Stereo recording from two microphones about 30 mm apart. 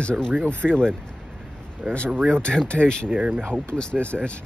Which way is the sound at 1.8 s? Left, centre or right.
Left.